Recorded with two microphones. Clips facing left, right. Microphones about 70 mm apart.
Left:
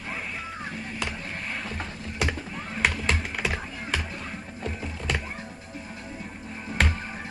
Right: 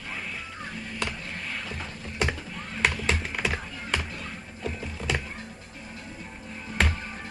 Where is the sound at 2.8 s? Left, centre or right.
Centre.